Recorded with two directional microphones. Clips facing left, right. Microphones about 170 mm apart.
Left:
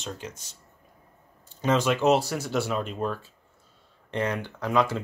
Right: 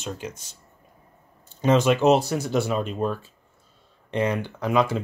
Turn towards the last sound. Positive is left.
turn(degrees=-15)  # may be behind; listen again after turning